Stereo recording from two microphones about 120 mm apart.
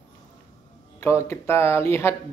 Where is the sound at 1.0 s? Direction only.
20° left (ahead or behind).